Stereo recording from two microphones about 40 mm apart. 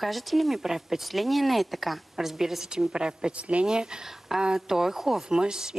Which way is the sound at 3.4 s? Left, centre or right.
Right.